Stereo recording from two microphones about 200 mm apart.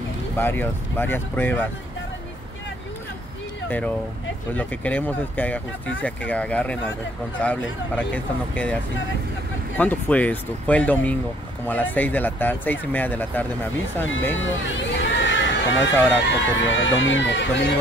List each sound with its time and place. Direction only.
0.4 s speech: 10° left (ahead or behind)
3.6 s speech: 10° left (ahead or behind)
9.8 s speech: 10° left (ahead or behind)
14.3 s speech: 70° left (ahead or behind)